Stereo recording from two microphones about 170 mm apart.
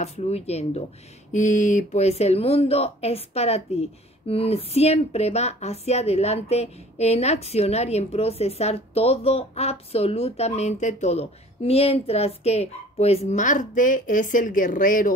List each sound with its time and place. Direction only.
0.0 s speech: 40° left (ahead or behind)